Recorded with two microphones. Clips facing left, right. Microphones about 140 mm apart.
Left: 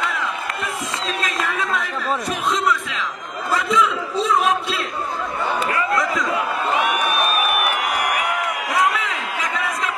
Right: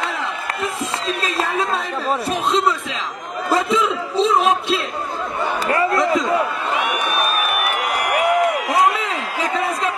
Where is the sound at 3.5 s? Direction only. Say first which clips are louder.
Right 1 dB; 30° right (ahead or behind).